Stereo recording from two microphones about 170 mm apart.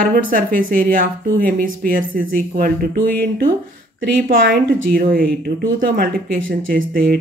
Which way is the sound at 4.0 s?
85° right.